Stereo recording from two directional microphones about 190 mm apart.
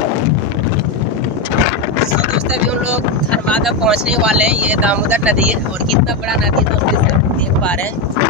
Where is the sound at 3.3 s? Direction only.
5° left (ahead or behind).